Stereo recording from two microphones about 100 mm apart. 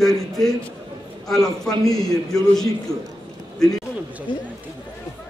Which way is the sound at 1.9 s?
40° left (ahead or behind).